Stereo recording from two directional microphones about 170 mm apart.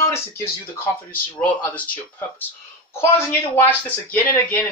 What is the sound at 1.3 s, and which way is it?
Speech, 10° left (ahead or behind).